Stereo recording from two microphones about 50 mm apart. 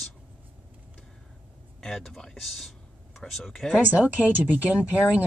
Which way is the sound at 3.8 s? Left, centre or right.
Right.